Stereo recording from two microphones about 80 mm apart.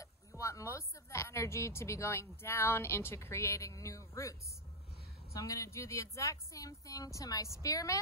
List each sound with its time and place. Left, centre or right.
0.0 s a woman's voice: left